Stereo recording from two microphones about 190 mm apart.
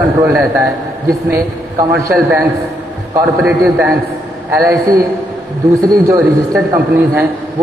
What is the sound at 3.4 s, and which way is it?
Speech, centre (ahead or behind).